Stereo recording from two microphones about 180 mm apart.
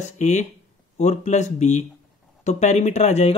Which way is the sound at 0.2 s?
40° left (ahead or behind).